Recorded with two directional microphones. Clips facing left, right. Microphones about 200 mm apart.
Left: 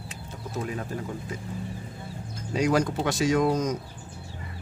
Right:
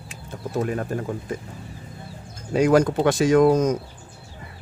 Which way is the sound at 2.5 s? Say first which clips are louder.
Right 6 dB; 55° right (ahead or behind).